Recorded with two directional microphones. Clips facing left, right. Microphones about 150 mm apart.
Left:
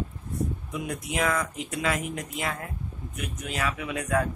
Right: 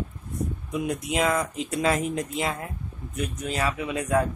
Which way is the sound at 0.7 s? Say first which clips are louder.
Right 5 dB; 20° right (ahead or behind).